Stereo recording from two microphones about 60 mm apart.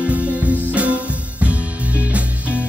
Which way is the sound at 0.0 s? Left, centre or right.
Right.